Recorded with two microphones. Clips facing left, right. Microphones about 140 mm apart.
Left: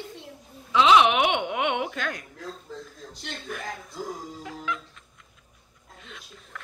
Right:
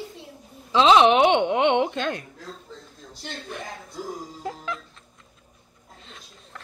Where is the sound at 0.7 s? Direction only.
30° right (ahead or behind).